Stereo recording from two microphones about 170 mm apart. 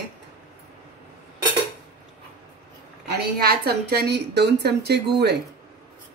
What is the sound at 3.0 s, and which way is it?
A woman's voice, 70° right (ahead or behind).